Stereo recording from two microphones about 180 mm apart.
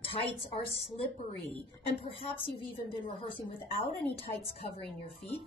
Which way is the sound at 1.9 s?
30° left (ahead or behind).